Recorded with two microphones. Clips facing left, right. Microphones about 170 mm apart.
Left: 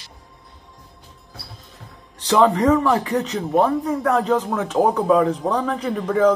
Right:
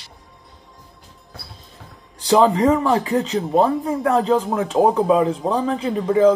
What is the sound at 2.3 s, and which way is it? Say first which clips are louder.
A man's voice: right 1 dB; 30° right (ahead or behind).